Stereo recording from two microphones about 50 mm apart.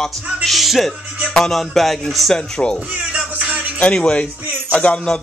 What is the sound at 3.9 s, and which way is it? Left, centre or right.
A man's voice, centre.